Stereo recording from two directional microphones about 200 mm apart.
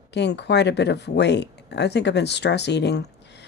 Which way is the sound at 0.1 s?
60° left (ahead or behind).